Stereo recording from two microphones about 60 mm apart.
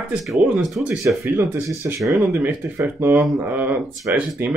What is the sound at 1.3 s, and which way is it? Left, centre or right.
Speech, right.